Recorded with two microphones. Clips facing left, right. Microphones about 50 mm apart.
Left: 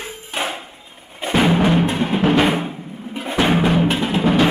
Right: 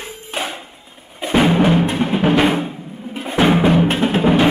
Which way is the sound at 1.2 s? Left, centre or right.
Centre.